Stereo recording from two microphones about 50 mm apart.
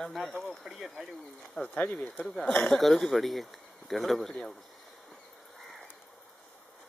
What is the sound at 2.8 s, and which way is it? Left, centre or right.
Speech, centre.